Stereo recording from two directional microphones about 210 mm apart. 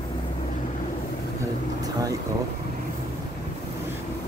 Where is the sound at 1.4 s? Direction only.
15° right (ahead or behind).